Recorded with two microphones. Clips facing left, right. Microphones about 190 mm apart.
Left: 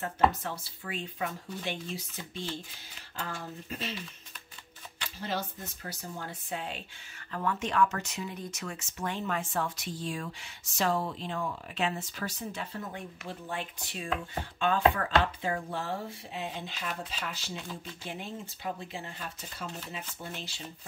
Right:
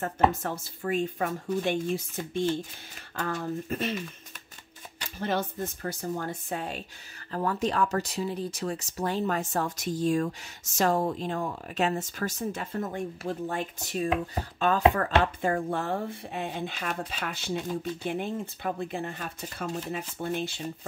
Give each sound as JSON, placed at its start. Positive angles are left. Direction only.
{"t": 0.3, "sound": "speech", "side_deg": -45}
{"t": 5.2, "sound": "speech", "side_deg": -55}